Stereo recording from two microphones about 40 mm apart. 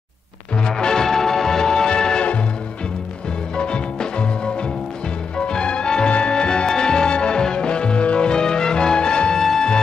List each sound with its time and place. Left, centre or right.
0.6 s music: centre
3.5 s music: left
9.4 s music: centre